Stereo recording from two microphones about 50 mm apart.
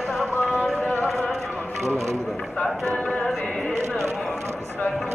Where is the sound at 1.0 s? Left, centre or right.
Centre.